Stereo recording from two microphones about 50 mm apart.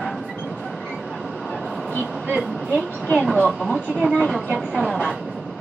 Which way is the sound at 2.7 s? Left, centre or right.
Centre.